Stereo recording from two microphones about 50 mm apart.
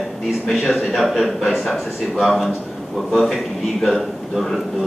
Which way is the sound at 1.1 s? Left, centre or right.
Centre.